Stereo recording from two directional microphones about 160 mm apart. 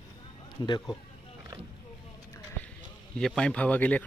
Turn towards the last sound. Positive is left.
turn(degrees=10)  # may be behind; listen again after turning